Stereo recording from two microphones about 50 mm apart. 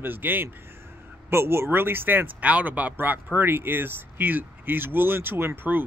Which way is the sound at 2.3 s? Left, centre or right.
Right.